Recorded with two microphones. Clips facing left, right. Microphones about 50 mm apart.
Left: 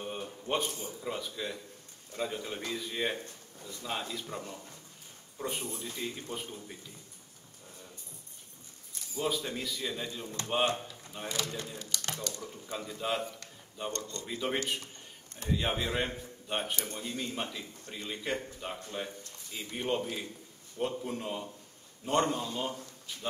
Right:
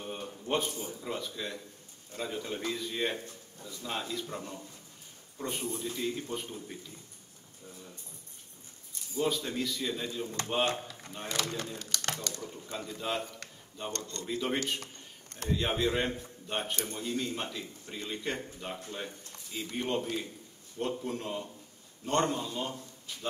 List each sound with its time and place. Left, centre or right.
0.0 s a sound: centre
0.6 s a man's voice: centre
9.1 s a man's voice: centre
11.2 s speech: right
12.7 s a man's voice: centre
13.9 s speech: right
14.2 s a man's voice: centre